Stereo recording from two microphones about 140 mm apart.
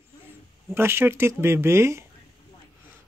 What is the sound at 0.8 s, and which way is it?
Speech, 15° right (ahead or behind).